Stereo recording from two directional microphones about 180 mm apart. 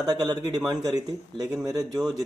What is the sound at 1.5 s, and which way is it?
Speech, 5° right (ahead or behind).